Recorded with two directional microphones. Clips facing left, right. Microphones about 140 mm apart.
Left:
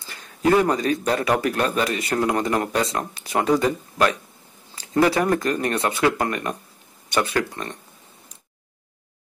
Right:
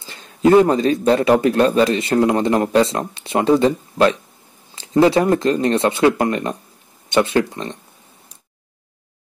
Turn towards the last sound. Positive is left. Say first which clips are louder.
# right 6 dB
turn(degrees=-25)  # may be behind; listen again after turning